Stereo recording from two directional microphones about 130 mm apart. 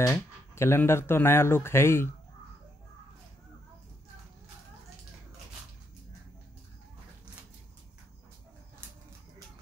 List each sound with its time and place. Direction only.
0.0 s speech: 20° left (ahead or behind)